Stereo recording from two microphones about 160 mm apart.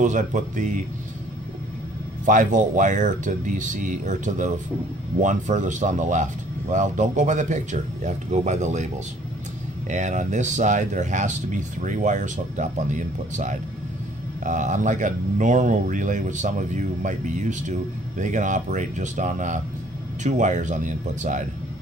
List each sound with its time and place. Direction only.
0.0 s speech: 50° right (ahead or behind)
2.2 s speech: 55° right (ahead or behind)